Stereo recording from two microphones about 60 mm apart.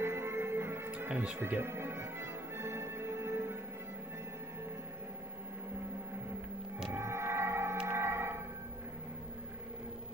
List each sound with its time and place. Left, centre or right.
0.0 s music: right
0.9 s speech: right
1.6 s music: right
6.9 s music: right